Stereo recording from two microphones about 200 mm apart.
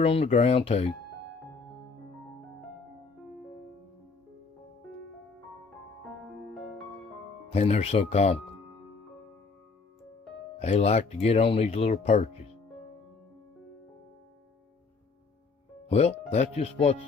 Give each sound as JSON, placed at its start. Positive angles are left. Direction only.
{"t": 0.0, "sound": "speech", "side_deg": 30}
{"t": 7.5, "sound": "speech", "side_deg": 30}
{"t": 10.6, "sound": "speech", "side_deg": 30}
{"t": 15.9, "sound": "speech", "side_deg": 30}